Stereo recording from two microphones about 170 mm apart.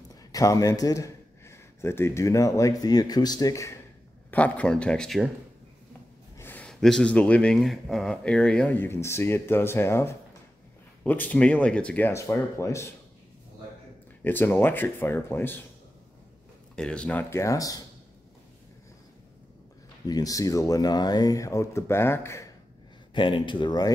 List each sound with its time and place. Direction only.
0.1 s a man's voice: 20° left (ahead or behind); by 5.3 s centre (ahead or behind)
6.3 s speech: 10° left (ahead or behind)
14.2 s speech: 10° left (ahead or behind)
16.7 s speech: 5° left (ahead or behind); by 17.8 s 20° left (ahead or behind)
20.1 s speech: 20° left (ahead or behind)
23.1 s speech: 30° left (ahead or behind)